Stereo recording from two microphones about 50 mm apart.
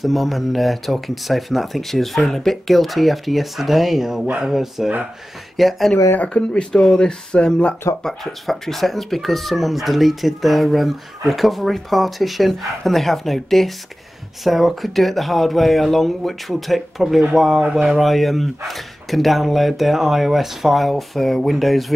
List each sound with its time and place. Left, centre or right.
0.0 s speech: centre
6.1 s speech: left
6.7 s speech: centre
8.0 s speech: centre